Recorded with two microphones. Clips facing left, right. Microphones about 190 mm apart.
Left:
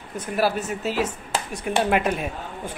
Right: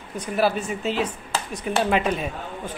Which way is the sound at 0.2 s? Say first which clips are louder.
Right 1 dB; 5° left (ahead or behind).